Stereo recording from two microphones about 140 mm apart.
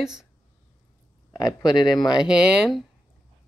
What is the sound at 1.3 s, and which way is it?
Speech, 30° left (ahead or behind).